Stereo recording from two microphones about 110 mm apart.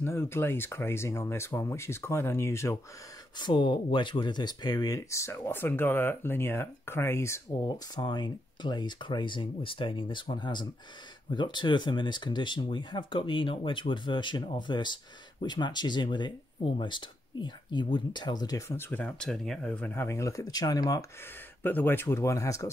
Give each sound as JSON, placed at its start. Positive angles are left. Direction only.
{"t": 0.0, "sound": "speech", "side_deg": 20}
{"t": 3.3, "sound": "speech", "side_deg": 45}
{"t": 7.6, "sound": "speech", "side_deg": 40}
{"t": 18.7, "sound": "speech", "side_deg": 20}
{"t": 21.6, "sound": "speech", "side_deg": 20}